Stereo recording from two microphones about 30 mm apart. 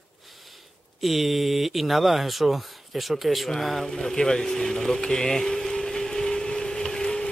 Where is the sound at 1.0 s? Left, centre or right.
Centre.